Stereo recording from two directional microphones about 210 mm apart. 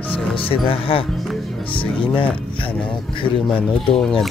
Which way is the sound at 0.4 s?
25° left (ahead or behind).